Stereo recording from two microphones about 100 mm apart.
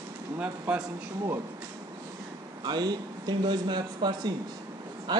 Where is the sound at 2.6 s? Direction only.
45° right (ahead or behind).